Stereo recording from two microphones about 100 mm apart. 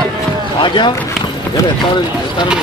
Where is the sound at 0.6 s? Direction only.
50° left (ahead or behind).